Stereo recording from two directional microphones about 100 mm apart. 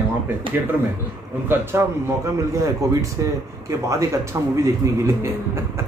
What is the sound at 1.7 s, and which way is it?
A man's voice, 25° right (ahead or behind).